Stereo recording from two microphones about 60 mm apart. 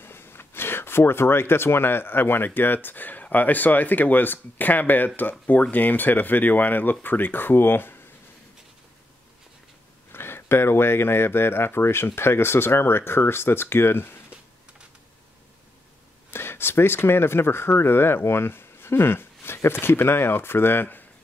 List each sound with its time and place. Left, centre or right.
0.0 s speech: left
10.1 s speech: left
16.3 s speech: left